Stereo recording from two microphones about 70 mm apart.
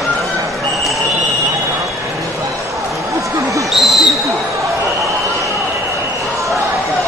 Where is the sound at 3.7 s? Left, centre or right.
Centre.